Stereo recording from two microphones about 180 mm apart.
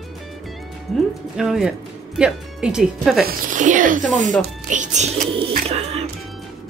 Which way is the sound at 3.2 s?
45° right (ahead or behind).